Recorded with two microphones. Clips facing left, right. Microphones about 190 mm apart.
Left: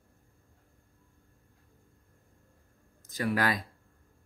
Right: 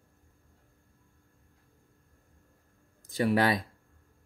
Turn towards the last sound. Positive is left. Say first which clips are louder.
# right 4 dB
turn(degrees=-20)  # may be behind; listen again after turning